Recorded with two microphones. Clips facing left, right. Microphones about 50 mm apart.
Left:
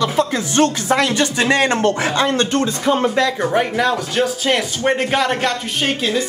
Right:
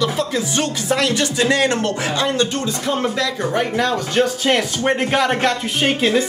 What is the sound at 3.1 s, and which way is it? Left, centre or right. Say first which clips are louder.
Speech: left 4 dB; left.